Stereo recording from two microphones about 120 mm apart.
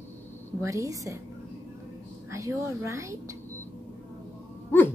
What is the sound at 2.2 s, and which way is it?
Speech, 25° right (ahead or behind).